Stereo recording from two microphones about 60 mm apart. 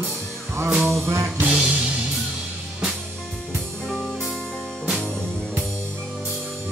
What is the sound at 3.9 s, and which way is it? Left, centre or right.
Music, centre.